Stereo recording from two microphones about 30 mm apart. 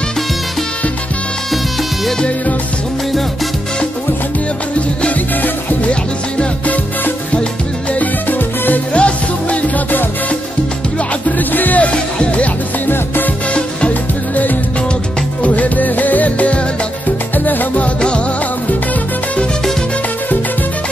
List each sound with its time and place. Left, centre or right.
8.3 s music: left
8.9 s music: left
11.3 s music: left
11.9 s speech: left
13.6 s music: left
14.3 s music: left
15.4 s music: left
17.5 s music: left